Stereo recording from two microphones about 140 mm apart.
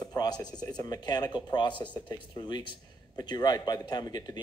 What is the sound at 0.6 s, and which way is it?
Speech, 30° left (ahead or behind).